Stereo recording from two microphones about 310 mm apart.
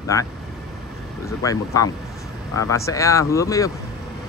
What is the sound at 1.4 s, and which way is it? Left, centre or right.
Speech, centre.